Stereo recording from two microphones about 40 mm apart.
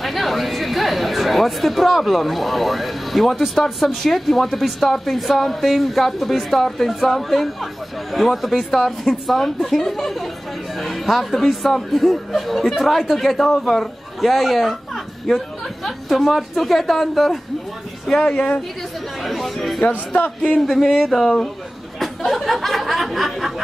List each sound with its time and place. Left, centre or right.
0.0 s a man's voice: centre
13.3 s speech: centre
18.0 s speech: centre
19.2 s speech: centre